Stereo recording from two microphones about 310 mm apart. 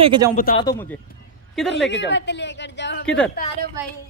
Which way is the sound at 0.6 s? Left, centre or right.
Centre.